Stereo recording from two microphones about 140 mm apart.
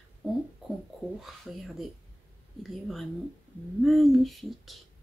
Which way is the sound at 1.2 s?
Centre (ahead or behind).